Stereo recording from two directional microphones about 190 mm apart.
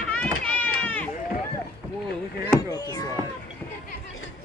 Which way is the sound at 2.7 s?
20° left (ahead or behind).